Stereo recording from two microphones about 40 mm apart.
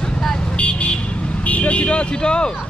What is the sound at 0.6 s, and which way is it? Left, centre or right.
Vehicle, left.